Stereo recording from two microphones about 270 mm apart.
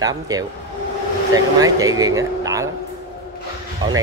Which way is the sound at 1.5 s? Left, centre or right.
Centre.